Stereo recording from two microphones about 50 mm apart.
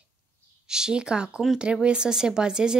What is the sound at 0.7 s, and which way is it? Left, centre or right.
Speech, centre.